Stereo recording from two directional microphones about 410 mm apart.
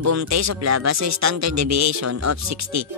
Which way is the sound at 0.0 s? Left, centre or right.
Right.